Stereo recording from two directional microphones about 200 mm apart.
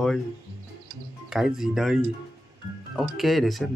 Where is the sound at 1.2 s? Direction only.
5° right (ahead or behind).